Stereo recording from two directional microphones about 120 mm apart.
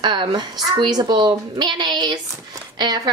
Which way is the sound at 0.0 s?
40° right (ahead or behind).